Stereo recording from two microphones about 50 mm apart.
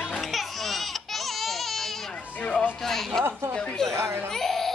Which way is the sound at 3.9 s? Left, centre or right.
Right.